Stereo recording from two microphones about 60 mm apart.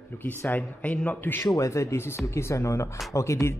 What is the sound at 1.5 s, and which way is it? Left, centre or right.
Speech, left.